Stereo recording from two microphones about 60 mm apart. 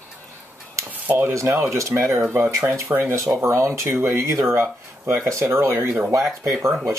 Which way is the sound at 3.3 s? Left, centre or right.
Right.